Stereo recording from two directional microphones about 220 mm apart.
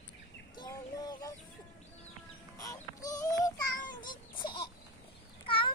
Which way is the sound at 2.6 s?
15° left (ahead or behind).